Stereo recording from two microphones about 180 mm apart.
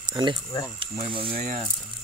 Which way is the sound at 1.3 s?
45° right (ahead or behind).